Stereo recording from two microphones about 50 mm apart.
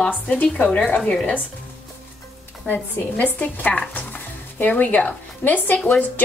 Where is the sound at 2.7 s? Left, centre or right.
Left.